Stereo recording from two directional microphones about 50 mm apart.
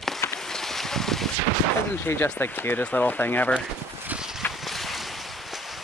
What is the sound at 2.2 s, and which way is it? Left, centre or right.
Speech, left.